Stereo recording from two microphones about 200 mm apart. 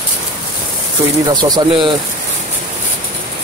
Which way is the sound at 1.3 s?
20° right (ahead or behind).